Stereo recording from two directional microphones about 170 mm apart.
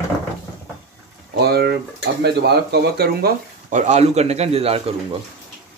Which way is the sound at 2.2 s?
75° right (ahead or behind).